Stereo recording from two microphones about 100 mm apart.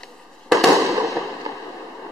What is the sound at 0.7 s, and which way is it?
Fireworks, 30° right (ahead or behind).